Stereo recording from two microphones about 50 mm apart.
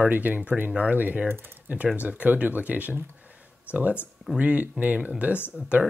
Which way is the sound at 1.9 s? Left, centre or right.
Right.